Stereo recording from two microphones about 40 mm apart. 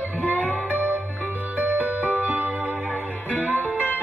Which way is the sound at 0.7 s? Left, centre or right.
Right.